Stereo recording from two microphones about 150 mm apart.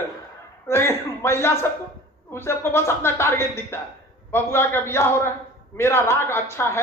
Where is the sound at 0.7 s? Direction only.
15° left (ahead or behind).